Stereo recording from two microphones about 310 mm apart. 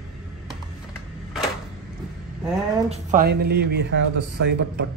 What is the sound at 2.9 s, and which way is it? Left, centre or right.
Speech, right.